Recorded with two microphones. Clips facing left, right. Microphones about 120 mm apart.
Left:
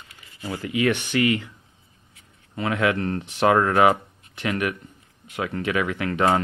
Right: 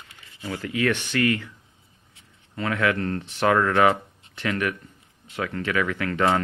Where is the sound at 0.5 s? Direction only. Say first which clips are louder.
Left 2 dB; 15° left (ahead or behind).